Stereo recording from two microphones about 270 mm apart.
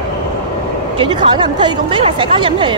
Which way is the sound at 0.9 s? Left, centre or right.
Centre.